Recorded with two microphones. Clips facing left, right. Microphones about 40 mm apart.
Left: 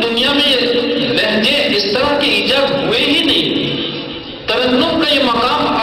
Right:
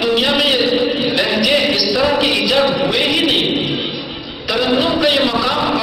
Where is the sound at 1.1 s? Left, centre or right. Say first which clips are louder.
Even; centre.